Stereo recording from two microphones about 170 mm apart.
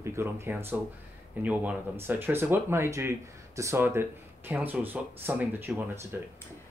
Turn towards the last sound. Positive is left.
turn(degrees=-10)  # may be behind; listen again after turning